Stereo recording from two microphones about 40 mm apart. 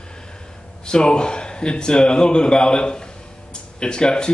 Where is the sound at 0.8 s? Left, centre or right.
Left.